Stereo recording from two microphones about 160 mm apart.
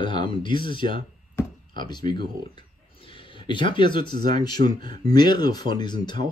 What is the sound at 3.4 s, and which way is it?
Speech, 30° left (ahead or behind).